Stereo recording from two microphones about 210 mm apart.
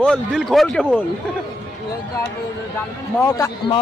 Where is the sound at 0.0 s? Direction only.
5° left (ahead or behind).